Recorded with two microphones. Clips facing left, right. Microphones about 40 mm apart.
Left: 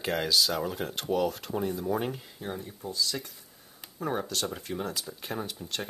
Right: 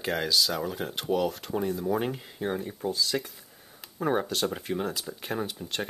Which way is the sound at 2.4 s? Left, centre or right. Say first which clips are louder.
Right 8 dB; right.